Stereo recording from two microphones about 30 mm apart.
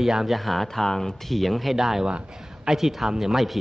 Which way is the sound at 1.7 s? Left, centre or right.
Centre.